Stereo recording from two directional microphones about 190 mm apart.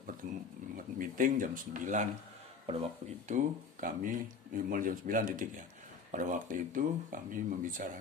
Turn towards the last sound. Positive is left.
turn(degrees=-45)  # may be behind; listen again after turning